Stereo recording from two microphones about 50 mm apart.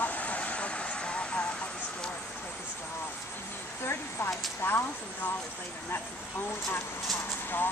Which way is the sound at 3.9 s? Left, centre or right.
Left.